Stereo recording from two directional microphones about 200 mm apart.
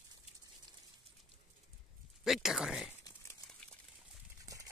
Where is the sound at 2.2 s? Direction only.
Centre (ahead or behind).